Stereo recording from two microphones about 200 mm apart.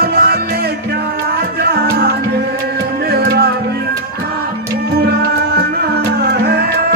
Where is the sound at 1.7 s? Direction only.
50° right (ahead or behind).